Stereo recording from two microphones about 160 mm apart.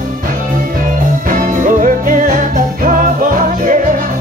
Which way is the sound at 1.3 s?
55° right (ahead or behind).